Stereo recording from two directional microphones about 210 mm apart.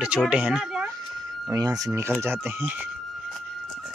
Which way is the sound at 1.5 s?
15° right (ahead or behind).